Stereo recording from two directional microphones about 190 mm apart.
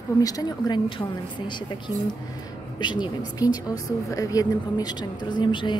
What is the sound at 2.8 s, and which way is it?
A woman's voice, 25° left (ahead or behind).